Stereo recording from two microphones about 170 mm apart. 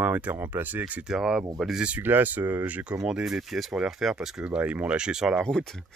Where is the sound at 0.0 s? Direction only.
10° right (ahead or behind).